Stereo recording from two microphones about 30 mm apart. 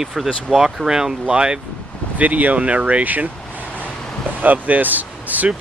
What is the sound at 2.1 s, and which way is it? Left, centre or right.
Speech, right.